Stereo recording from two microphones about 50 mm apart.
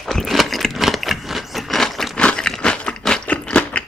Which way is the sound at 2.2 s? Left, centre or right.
Centre.